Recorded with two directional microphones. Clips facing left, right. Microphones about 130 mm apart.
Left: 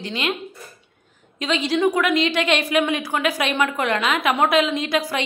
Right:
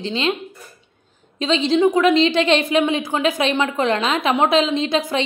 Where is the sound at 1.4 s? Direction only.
25° right (ahead or behind).